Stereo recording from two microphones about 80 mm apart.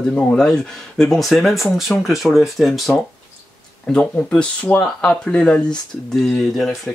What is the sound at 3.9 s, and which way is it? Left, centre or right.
Speech, centre.